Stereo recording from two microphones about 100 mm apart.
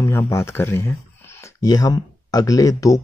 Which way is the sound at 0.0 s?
30° left (ahead or behind).